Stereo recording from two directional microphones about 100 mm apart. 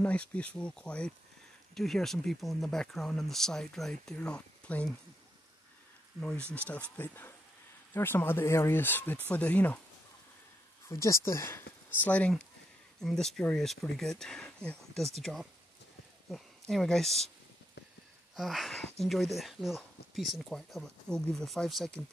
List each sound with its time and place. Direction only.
0.0 s speech: 15° left (ahead or behind)
6.1 s speech: 5° left (ahead or behind)
10.9 s speech: 30° left (ahead or behind)
12.1 s speech: 15° left (ahead or behind)
13.0 s speech: 5° left (ahead or behind)
18.3 s speech: centre (ahead or behind)